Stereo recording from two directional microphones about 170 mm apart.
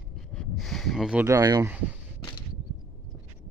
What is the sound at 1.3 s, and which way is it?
Speech, 20° right (ahead or behind).